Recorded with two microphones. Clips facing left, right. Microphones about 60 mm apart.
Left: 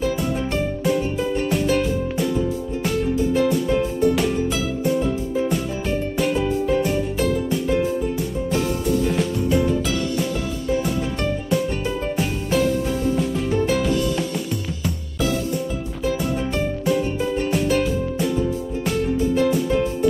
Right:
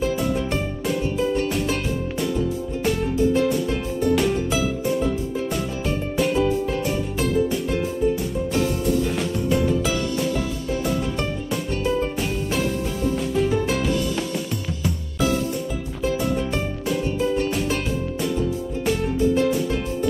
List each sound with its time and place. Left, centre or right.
1.1 s music: centre
1.5 s music: centre
6.1 s music: centre
8.5 s music: centre
12.0 s music: centre
17.5 s music: centre
19.3 s music: centre